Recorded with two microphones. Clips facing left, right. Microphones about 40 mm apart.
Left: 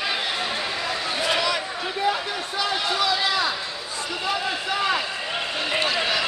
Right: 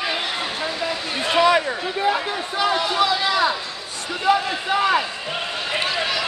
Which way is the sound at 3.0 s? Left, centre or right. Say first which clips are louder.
Right 3 dB; centre.